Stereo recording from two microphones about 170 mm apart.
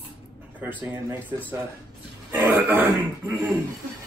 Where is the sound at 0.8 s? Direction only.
15° right (ahead or behind).